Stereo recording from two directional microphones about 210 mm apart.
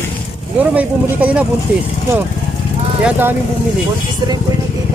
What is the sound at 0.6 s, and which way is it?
Speech, 5° right (ahead or behind).